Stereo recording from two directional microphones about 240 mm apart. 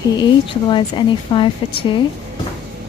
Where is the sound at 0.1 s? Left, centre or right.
Centre.